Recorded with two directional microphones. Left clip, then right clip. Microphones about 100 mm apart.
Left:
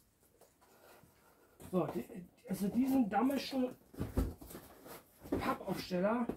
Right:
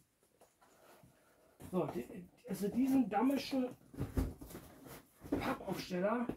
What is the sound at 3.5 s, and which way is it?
Speech, 20° left (ahead or behind).